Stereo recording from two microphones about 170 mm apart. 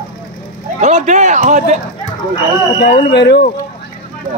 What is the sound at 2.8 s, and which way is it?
Speech, 85° left.